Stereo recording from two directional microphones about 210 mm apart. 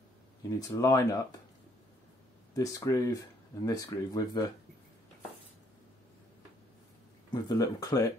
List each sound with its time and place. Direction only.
0.5 s speech: 15° left (ahead or behind)
2.5 s speech: 15° left (ahead or behind)
7.3 s speech: 15° left (ahead or behind)